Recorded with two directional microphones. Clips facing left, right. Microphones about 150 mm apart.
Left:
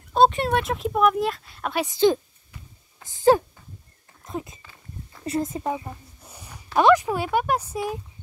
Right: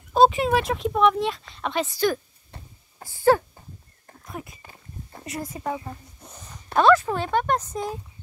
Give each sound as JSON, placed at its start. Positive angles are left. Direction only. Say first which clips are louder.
{"t": 0.1, "sound": "speech", "louder": "right 1 dB", "side_deg": 0}
{"t": 1.9, "sound": "speech", "louder": "left 5 dB", "side_deg": 20}
{"t": 4.6, "sound": "a sound", "louder": "even", "side_deg": -40}
{"t": 5.2, "sound": "speech", "louder": "left 5 dB", "side_deg": 25}
{"t": 5.9, "sound": "speech", "louder": "right 1 dB", "side_deg": 10}